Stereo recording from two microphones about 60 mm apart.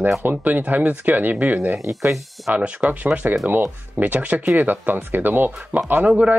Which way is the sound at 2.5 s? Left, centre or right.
Right.